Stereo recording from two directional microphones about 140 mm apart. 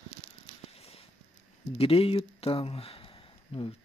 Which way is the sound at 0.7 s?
45° left (ahead or behind).